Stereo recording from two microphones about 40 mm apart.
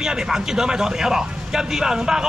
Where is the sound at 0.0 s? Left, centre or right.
Centre.